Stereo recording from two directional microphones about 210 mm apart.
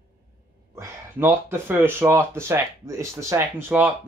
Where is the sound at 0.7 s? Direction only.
10° right (ahead or behind).